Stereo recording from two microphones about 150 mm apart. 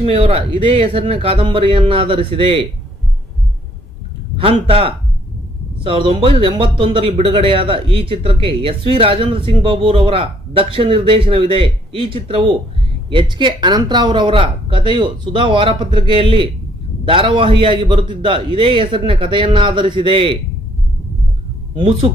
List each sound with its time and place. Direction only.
0.0 s speech: 40° right (ahead or behind)
4.4 s speech: 35° right (ahead or behind)